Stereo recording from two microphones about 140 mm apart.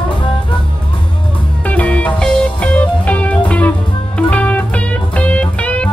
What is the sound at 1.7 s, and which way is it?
Music, 10° left (ahead or behind).